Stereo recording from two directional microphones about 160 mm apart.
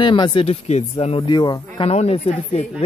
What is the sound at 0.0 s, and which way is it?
Speech, 30° left (ahead or behind).